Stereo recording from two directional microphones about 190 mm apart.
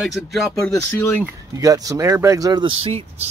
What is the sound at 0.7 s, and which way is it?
Speech, 15° left (ahead or behind).